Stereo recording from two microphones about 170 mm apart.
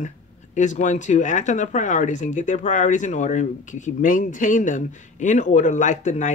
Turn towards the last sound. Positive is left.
turn(degrees=45)  # may be behind; listen again after turning